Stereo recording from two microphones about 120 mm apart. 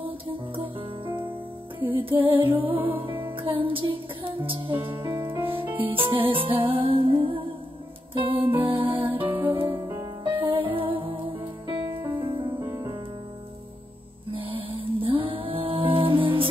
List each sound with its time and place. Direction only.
0.0 s music: 45° right (ahead or behind)
9.0 s music: 15° right (ahead or behind)
10.2 s music: 45° right (ahead or behind)
12.5 s music: 30° right (ahead or behind)
14.4 s music: 50° right (ahead or behind)